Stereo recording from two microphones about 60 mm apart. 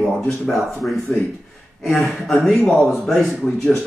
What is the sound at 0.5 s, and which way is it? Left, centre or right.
Speech, centre.